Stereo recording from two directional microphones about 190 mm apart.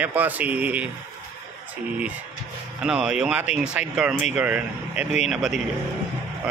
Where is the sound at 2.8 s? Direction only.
5° right (ahead or behind).